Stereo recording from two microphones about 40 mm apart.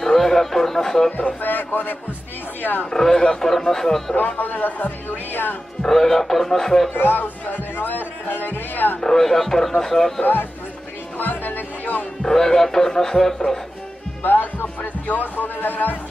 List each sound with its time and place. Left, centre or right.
0.0 s music: centre
1.1 s speech: left
2.9 s speech: centre
4.4 s speech: left
5.9 s speech: centre
6.9 s music: left
7.7 s speech: left
9.0 s speech: centre
11.1 s music: left
12.2 s speech: centre
14.2 s speech: left